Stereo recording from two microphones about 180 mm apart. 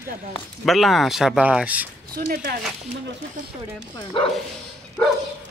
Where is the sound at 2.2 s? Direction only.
55° right (ahead or behind).